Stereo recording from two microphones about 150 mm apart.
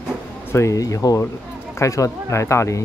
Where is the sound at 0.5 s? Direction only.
20° left (ahead or behind).